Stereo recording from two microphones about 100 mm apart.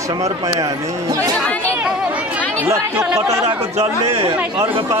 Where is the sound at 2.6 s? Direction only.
30° right (ahead or behind).